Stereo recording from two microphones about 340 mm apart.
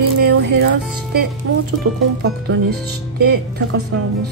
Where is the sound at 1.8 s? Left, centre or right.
Right.